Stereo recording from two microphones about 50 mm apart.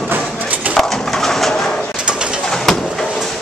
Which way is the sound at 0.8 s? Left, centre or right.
Centre.